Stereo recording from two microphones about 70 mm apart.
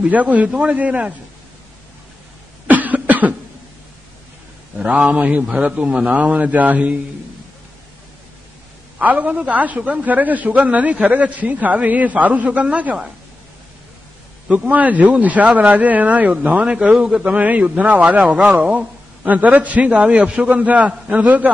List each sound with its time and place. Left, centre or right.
0.0 s a man's voice: right
2.7 s cough: right
4.7 s a man's voice: centre
8.9 s a man's voice: right
14.5 s a man's voice: right